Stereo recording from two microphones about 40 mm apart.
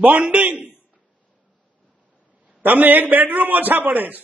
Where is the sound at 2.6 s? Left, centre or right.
Right.